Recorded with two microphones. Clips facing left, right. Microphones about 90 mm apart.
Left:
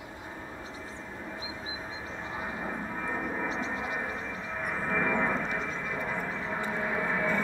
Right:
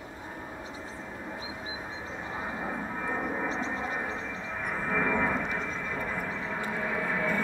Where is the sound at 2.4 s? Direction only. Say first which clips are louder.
Right 1 dB; 5° right (ahead or behind).